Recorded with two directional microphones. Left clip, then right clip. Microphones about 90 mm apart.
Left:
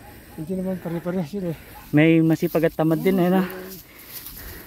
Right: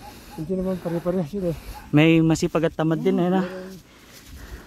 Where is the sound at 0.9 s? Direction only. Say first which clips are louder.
Right 3 dB; 25° right (ahead or behind).